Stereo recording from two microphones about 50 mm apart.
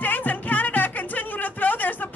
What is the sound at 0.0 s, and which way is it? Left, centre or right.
Music, left.